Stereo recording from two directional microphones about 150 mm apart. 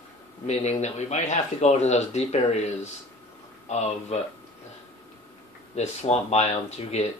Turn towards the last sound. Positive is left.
turn(degrees=45)  # may be behind; listen again after turning